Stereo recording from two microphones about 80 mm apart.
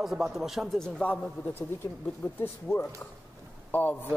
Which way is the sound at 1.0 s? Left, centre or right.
Centre.